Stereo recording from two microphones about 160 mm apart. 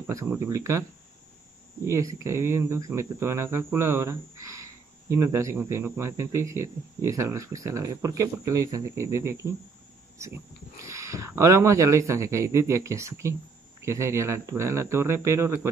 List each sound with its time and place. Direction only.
0.0 s speech: 20° right (ahead or behind)
1.9 s speech: 20° right (ahead or behind)
10.9 s speech: 20° right (ahead or behind)